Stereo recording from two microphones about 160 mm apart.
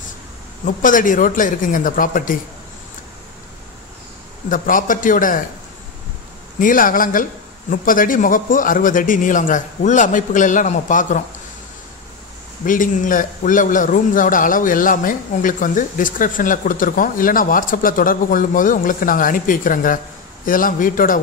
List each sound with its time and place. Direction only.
0.7 s a man's voice: 55° left (ahead or behind)
4.5 s a man's voice: 55° left (ahead or behind)
6.6 s a man's voice: 60° left (ahead or behind)
12.6 s a man's voice: 55° left (ahead or behind)